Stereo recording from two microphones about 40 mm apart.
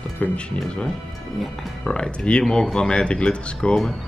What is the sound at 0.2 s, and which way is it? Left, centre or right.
Speech, left.